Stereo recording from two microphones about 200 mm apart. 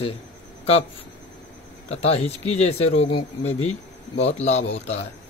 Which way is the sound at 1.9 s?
30° left (ahead or behind).